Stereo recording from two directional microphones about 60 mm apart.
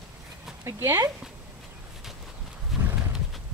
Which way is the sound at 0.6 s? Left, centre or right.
Right.